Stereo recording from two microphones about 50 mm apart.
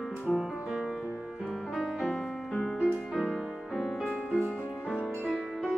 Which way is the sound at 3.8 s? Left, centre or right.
Centre.